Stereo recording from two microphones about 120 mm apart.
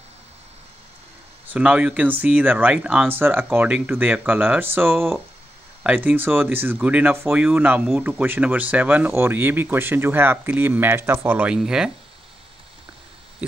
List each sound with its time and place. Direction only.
1.5 s speech: 10° right (ahead or behind)
13.4 s speech: 10° right (ahead or behind)